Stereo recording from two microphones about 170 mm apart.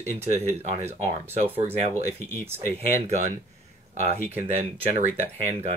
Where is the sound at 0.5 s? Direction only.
40° right (ahead or behind).